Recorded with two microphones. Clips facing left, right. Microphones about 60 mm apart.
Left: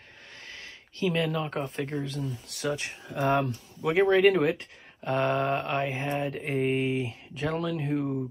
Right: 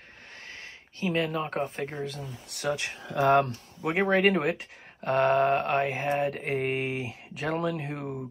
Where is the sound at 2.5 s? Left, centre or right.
Right.